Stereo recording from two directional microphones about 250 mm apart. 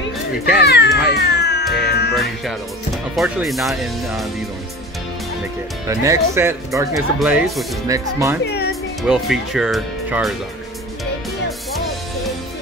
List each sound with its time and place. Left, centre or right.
0.6 s cat: left
3.2 s speech: centre
5.9 s speech: centre
8.5 s music: left
9.0 s speech: centre